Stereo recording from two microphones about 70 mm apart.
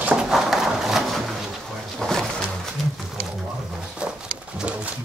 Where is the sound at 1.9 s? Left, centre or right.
Centre.